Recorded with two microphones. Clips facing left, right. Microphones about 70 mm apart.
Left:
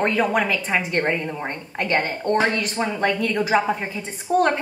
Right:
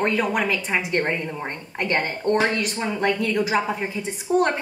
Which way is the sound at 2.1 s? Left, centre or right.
Left.